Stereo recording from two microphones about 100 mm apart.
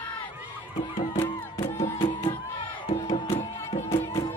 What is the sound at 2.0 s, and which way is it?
Music, 55° left (ahead or behind).